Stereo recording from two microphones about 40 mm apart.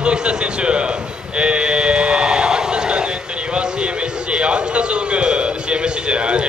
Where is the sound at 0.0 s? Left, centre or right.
Right.